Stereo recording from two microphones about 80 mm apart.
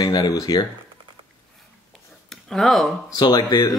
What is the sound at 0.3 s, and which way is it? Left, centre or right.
Speech, left.